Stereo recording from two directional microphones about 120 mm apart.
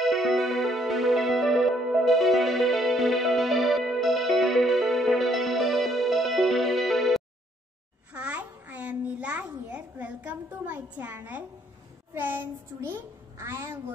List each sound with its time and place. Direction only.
0.0 s music: centre (ahead or behind)
8.1 s babbling: 10° right (ahead or behind)
12.1 s a child's voice: 15° right (ahead or behind)